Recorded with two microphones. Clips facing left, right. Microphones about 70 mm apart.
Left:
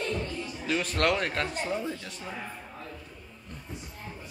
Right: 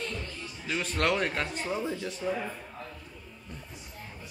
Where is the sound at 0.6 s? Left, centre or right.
Centre.